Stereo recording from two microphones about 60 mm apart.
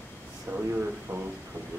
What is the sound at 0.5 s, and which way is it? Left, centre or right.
Speech, right.